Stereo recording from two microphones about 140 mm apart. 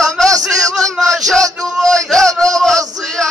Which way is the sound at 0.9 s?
Centre (ahead or behind).